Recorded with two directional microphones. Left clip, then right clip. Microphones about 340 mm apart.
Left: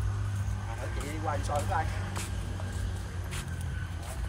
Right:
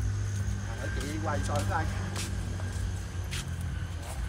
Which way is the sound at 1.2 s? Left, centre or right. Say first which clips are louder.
Left 1 dB; left.